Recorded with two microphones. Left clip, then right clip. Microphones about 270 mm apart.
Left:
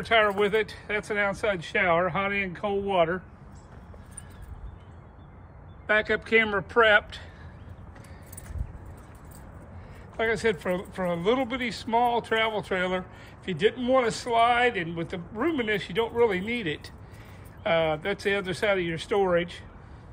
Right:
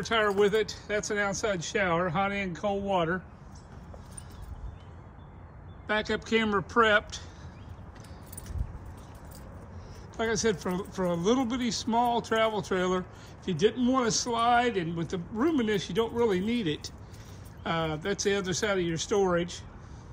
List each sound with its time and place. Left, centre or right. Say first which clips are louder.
0.0 s speech: left 3 dB; centre
5.9 s speech: left 5 dB; centre
10.1 s speech: left 3 dB; centre
13.7 s a man's voice: left 3 dB; centre
14.2 s speech: left 1 dB; centre